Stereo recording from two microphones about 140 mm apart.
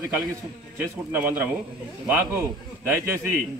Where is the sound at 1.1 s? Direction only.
15° right (ahead or behind).